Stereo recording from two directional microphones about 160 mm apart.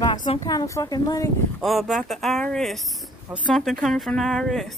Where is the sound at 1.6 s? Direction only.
Centre (ahead or behind).